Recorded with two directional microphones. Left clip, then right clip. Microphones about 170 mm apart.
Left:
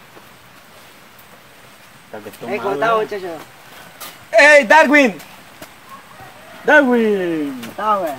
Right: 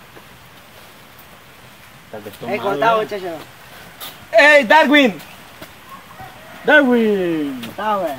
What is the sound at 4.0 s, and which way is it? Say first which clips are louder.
Speech: left 1 dB; 5° left (ahead or behind).